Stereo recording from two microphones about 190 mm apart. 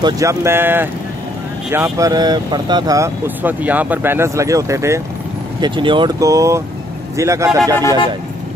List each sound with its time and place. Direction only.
0.0 s speech: 15° right (ahead or behind)
5.6 s speech: 25° right (ahead or behind)